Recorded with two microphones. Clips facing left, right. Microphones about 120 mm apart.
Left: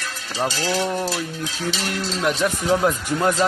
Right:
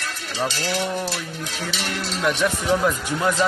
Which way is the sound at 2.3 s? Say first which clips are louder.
Even; 35° left (ahead or behind).